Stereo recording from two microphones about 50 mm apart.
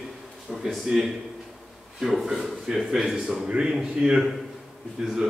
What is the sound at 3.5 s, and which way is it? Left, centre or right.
Speech, centre.